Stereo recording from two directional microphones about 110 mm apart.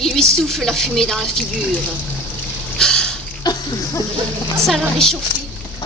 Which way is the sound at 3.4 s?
40° left (ahead or behind).